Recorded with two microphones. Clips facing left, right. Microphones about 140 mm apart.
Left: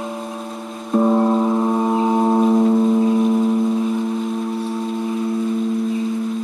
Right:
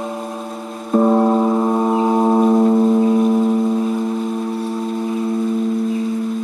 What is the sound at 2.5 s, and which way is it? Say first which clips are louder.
Singing bowl: right 2 dB; 15° right (ahead or behind).